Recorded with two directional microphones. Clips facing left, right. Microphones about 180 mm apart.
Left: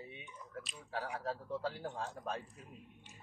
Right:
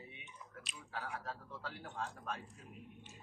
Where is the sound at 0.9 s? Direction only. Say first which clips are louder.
Left 5 dB; 35° left (ahead or behind).